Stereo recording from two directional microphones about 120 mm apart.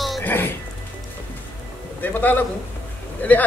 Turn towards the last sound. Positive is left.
turn(degrees=15)  # may be behind; listen again after turning